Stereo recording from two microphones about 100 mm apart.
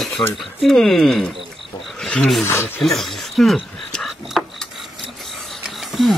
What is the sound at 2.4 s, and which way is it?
Speech, 25° left (ahead or behind).